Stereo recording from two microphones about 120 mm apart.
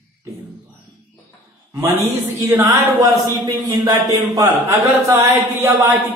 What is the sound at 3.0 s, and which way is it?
A man's voice, 30° right (ahead or behind).